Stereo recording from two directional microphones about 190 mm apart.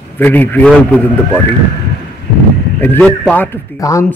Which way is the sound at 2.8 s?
10° left (ahead or behind).